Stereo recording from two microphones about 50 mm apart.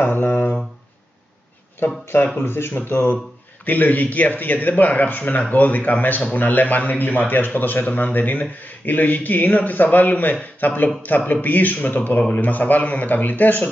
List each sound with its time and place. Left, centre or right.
0.0 s a sound: left
1.8 s speech: left
3.6 s a man's voice: left